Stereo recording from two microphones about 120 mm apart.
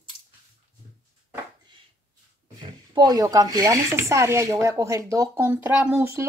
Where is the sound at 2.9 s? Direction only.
35° right (ahead or behind).